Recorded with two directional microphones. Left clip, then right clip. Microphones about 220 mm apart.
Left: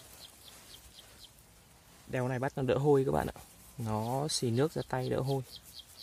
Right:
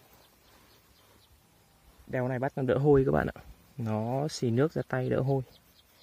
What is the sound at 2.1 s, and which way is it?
Speech, 30° right (ahead or behind).